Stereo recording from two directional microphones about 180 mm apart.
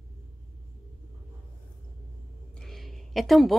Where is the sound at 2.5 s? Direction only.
Centre (ahead or behind).